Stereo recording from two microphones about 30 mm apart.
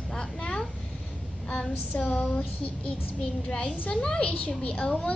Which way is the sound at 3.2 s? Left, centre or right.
Left.